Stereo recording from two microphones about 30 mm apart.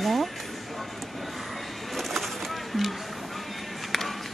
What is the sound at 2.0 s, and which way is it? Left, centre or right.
Pigeon, centre.